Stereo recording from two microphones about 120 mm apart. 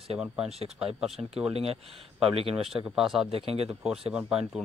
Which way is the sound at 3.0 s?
5° right (ahead or behind).